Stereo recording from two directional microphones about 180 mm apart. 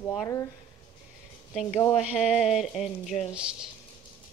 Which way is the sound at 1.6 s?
5° left (ahead or behind).